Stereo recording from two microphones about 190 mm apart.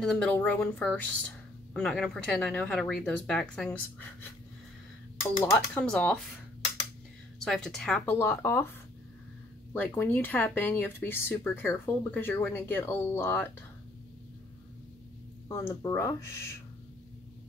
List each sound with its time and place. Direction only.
0.0 s speech: 5° left (ahead or behind)
5.5 s speech: 5° left (ahead or behind)
7.4 s speech: 5° left (ahead or behind)
9.8 s speech: 10° left (ahead or behind)
15.4 s speech: 15° left (ahead or behind)